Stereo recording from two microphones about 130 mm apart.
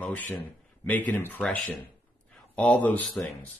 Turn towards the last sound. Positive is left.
turn(degrees=10)  # may be behind; listen again after turning